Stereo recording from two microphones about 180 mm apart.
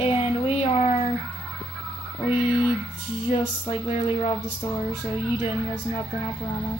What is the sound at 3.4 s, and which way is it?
Speech, 35° left (ahead or behind).